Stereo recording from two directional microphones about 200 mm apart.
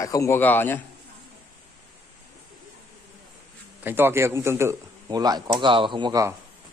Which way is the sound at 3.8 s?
10° right (ahead or behind).